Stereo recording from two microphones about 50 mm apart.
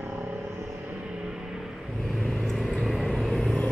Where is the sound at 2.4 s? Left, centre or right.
Centre.